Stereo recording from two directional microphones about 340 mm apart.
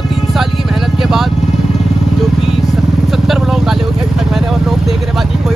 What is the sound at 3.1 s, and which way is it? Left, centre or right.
Vehicle, centre.